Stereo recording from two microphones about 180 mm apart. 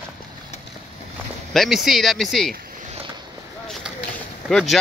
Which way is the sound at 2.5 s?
55° right (ahead or behind).